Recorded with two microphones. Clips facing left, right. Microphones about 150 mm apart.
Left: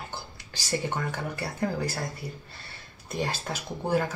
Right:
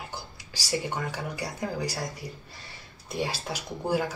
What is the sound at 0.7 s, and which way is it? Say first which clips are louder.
Speech: left 1 dB; 10° right (ahead or behind).